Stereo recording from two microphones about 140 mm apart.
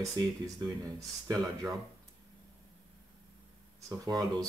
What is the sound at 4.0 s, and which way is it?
Speech, 25° right (ahead or behind).